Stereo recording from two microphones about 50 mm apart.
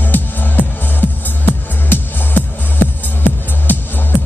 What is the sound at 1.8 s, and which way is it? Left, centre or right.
Music, left.